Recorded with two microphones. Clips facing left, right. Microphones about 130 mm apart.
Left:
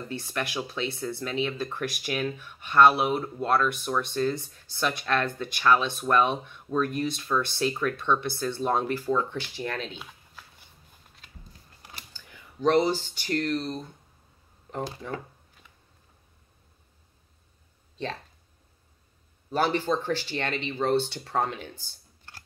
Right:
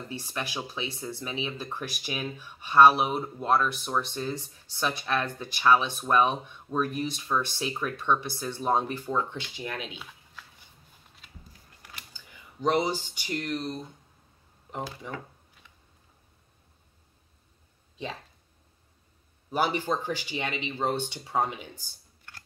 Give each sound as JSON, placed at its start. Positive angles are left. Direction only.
{"t": 0.1, "sound": "speech", "side_deg": -15}
{"t": 12.1, "sound": "computer keyboard", "side_deg": -20}
{"t": 12.6, "sound": "speech", "side_deg": -15}
{"t": 17.9, "sound": "speech", "side_deg": -10}
{"t": 19.5, "sound": "speech", "side_deg": -10}
{"t": 22.3, "sound": "computer keyboard", "side_deg": 30}